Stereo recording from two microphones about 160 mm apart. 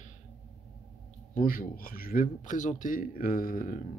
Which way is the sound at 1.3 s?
60° left (ahead or behind).